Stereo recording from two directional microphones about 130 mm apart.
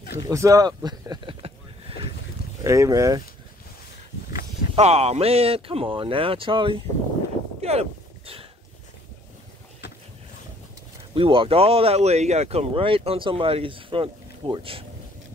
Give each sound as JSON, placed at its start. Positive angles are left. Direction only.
{"t": 0.1, "sound": "speech", "side_deg": -25}
{"t": 2.6, "sound": "speech", "side_deg": -25}
{"t": 4.7, "sound": "speech", "side_deg": -55}
{"t": 7.6, "sound": "a sound", "side_deg": -50}
{"t": 11.1, "sound": "speech", "side_deg": -45}